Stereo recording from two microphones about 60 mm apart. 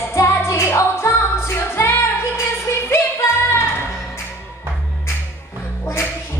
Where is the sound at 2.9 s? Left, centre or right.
Left.